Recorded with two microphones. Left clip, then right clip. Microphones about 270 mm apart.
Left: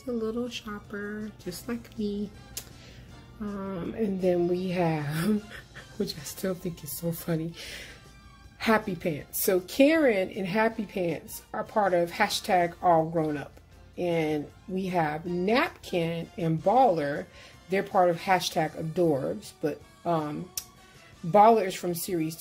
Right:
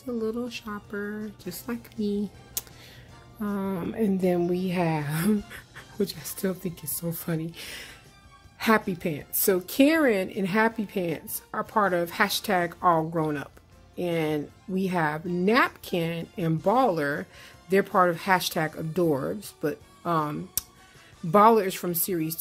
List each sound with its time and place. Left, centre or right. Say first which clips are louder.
0.2 s speech: right 1 dB; centre
2.6 s music: right 5 dB; right
3.3 s speech: right 4 dB; right
5.5 s music: right 1 dB; right
6.0 s speech: right 1 dB; right